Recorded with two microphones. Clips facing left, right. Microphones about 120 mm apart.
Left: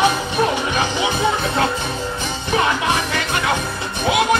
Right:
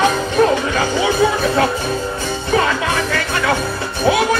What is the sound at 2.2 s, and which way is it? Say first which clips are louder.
Music: right 2 dB; 20° left (ahead or behind).